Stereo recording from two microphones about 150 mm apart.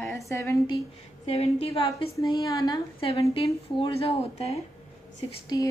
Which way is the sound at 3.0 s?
40° left (ahead or behind).